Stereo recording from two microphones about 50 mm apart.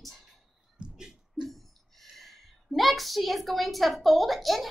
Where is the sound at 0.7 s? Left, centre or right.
Centre.